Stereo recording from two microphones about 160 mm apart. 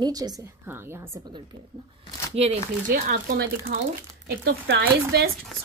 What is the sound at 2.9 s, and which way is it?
Speech, 60° right (ahead or behind).